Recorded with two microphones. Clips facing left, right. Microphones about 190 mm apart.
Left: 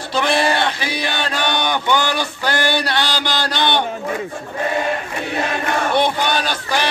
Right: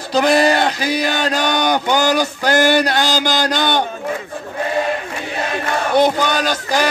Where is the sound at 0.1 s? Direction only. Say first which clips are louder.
Right 4 dB; 40° right (ahead or behind).